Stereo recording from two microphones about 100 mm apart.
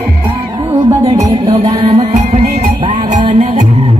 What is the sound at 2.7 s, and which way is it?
Music, 55° right (ahead or behind).